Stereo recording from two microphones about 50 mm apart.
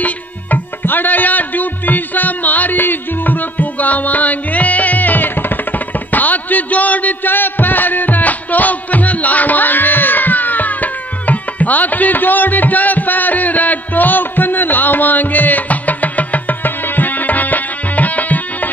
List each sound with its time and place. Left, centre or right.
0.0 s music: left